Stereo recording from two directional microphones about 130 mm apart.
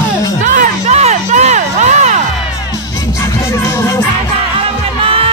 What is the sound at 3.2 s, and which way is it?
Music, 20° left (ahead or behind).